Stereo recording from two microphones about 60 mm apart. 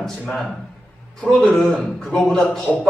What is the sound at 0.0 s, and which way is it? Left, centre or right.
A man's voice, centre.